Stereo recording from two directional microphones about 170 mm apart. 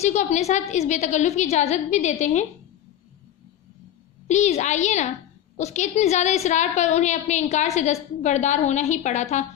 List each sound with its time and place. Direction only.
0.0 s a woman's voice: 45° left (ahead or behind)
4.3 s a woman's voice: 40° left (ahead or behind)